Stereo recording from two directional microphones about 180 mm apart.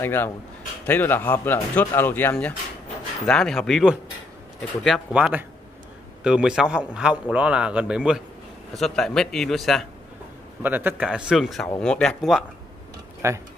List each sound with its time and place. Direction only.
0.0 s speech: 10° left (ahead or behind)
10.6 s speech: 10° right (ahead or behind)
13.2 s speech: 15° right (ahead or behind)